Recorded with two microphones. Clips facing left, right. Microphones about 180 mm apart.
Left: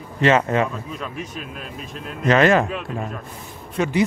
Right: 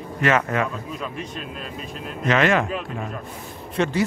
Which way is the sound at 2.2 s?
40° left (ahead or behind).